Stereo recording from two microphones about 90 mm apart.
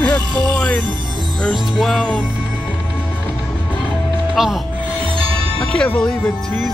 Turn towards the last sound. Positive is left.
turn(degrees=10)  # may be behind; listen again after turning